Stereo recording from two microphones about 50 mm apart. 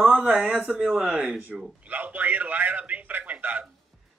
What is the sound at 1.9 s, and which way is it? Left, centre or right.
Speech, right.